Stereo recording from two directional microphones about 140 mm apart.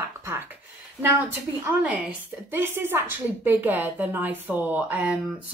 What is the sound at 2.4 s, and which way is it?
A woman's voice, 15° right (ahead or behind).